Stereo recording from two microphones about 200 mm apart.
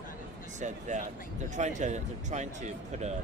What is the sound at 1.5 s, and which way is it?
Speech, 35° right (ahead or behind).